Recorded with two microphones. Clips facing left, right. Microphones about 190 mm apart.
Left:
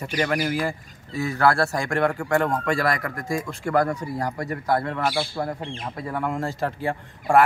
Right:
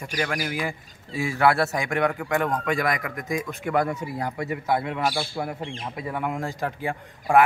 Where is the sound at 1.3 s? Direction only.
20° right (ahead or behind).